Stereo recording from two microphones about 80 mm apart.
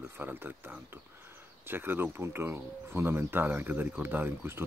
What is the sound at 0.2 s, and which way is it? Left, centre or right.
Speech, right.